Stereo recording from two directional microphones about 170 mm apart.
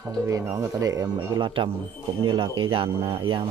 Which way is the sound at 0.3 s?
20° right (ahead or behind).